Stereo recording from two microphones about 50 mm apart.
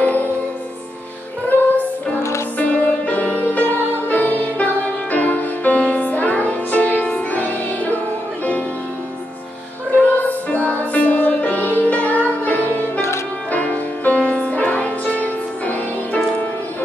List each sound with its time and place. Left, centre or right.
0.0 s music: left
2.5 s music: left
10.0 s music: left